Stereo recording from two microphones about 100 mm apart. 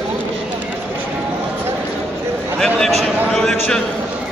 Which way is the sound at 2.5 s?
5° left (ahead or behind).